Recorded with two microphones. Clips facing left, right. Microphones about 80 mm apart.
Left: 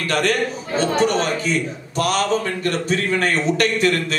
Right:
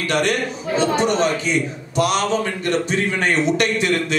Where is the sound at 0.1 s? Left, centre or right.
Left.